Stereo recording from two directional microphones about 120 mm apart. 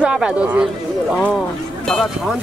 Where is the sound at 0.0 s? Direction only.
5° right (ahead or behind).